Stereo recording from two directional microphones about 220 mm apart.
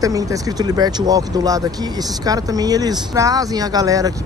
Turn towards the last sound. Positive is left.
turn(degrees=-15)  # may be behind; listen again after turning